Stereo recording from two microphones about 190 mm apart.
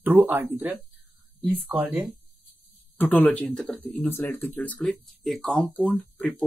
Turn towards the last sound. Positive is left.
turn(degrees=5)  # may be behind; listen again after turning